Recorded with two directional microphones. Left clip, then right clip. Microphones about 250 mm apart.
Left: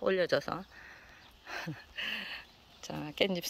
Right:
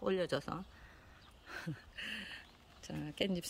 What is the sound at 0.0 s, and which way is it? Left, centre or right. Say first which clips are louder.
Speech: left 7 dB; centre.